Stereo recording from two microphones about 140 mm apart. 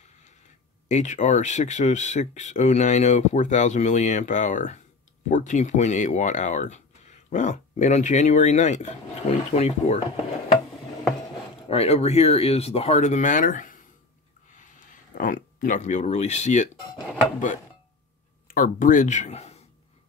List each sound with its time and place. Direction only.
0.8 s speech: 60° left (ahead or behind)
11.5 s speech: 45° left (ahead or behind)
18.5 s speech: 75° left (ahead or behind); by 19.6 s 50° left (ahead or behind)